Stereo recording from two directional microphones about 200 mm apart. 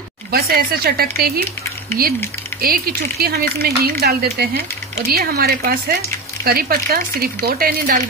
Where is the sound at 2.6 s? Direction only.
50° right (ahead or behind).